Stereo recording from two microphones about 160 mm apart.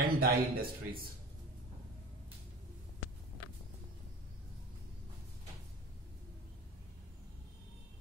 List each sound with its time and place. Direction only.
0.0 s a man's voice: 70° right (ahead or behind)